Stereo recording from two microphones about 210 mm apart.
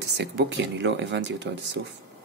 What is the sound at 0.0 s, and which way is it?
Speech, 55° right (ahead or behind).